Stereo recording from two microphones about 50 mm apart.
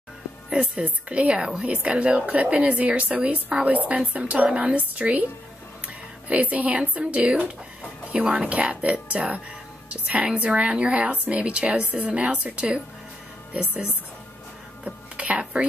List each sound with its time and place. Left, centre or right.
0.5 s a woman's voice: right
15.1 s whispering: right